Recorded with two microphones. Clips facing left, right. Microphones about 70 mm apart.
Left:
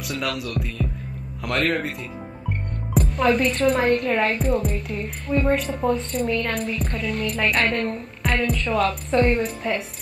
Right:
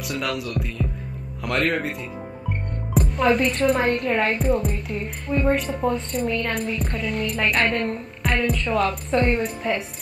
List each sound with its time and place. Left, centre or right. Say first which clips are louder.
0.2 s speech: even; centre